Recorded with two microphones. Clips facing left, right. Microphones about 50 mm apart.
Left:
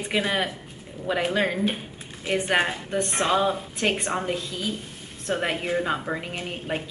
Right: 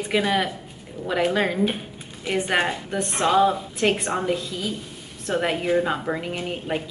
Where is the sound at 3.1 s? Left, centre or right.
Left.